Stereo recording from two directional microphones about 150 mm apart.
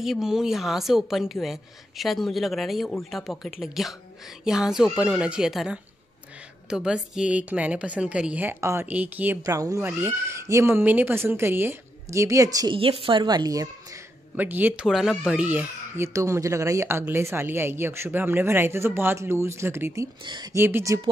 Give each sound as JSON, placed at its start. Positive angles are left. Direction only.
{"t": 0.0, "sound": "a woman's voice", "side_deg": 0}
{"t": 12.7, "sound": "a woman's voice", "side_deg": -35}
{"t": 14.3, "sound": "a woman's voice", "side_deg": -10}
{"t": 14.9, "sound": "a woman's voice", "side_deg": 0}
{"t": 20.2, "sound": "a woman's voice", "side_deg": -30}
{"t": 20.5, "sound": "a woman's voice", "side_deg": -15}